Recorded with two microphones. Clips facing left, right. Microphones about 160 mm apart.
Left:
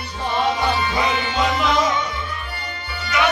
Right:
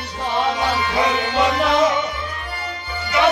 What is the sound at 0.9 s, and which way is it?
Music, 65° right (ahead or behind).